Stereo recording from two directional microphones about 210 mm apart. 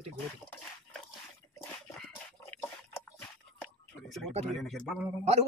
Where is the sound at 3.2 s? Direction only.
5° left (ahead or behind).